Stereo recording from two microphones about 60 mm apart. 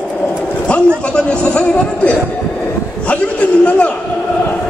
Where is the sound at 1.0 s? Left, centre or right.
Centre.